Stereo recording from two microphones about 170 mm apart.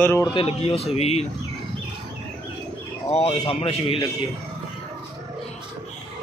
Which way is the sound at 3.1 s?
35° left (ahead or behind).